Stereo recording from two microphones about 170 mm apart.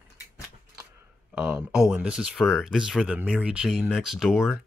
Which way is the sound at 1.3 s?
5° right (ahead or behind).